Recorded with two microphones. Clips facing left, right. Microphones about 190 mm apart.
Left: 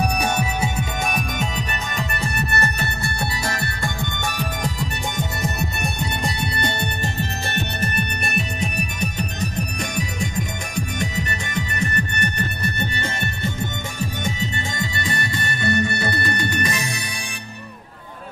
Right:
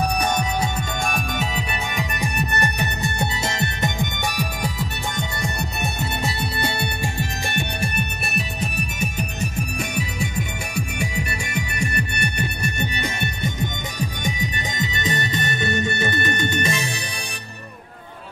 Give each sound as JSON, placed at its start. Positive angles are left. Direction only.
{"t": 0.0, "sound": "music", "side_deg": 10}
{"t": 1.4, "sound": "music", "side_deg": -5}
{"t": 5.4, "sound": "music", "side_deg": 0}